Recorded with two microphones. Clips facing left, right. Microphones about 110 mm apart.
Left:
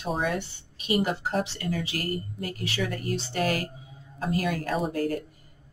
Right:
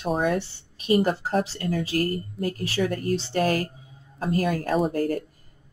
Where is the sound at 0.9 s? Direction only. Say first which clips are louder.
Right 4 dB; 40° right (ahead or behind).